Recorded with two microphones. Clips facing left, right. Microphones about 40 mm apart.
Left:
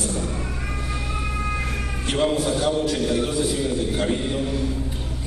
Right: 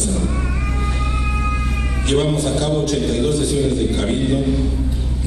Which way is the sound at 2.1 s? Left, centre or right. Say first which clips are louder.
Right 3 dB; right.